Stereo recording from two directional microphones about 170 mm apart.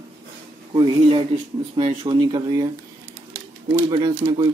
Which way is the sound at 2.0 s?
25° right (ahead or behind).